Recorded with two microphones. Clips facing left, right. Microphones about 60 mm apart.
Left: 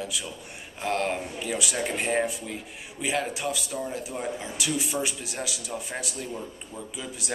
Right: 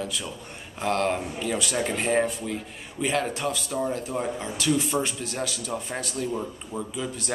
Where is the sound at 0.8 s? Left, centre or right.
Centre.